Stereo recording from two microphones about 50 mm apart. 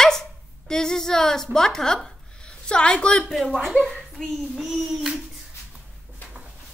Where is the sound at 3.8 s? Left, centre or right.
Centre.